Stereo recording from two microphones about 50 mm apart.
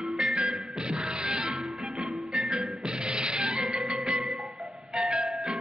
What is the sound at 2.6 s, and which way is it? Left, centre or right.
Music, centre.